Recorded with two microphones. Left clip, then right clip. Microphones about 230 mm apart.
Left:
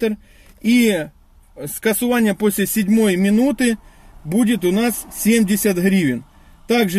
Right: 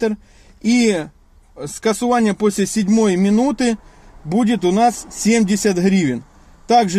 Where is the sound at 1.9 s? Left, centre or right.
Right.